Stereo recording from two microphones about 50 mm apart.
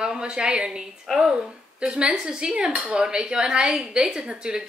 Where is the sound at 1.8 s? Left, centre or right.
Centre.